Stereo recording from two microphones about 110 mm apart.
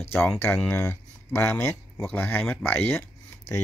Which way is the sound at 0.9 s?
25° left (ahead or behind).